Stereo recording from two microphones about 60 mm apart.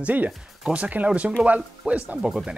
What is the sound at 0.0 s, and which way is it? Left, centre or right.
Speech, right.